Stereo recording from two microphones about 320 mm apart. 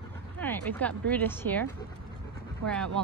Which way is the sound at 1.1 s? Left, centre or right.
Centre.